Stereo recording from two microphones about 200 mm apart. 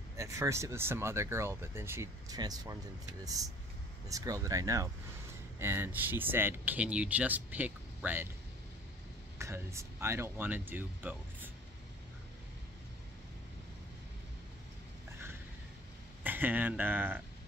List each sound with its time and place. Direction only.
0.2 s speech: 15° right (ahead or behind)
4.1 s speech: 15° right (ahead or behind)
9.4 s speech: 15° right (ahead or behind)
16.3 s speech: 10° right (ahead or behind)